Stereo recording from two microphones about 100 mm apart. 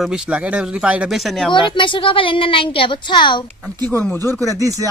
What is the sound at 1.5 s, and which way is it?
A woman's voice, 55° left (ahead or behind).